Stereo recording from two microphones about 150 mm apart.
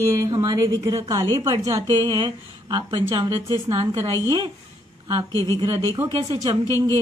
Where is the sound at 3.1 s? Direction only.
20° right (ahead or behind).